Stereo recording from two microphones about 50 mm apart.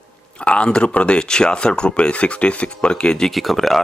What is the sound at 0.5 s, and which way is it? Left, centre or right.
Speech, left.